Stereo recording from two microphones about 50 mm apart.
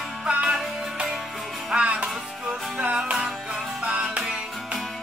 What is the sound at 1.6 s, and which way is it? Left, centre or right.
Music, right.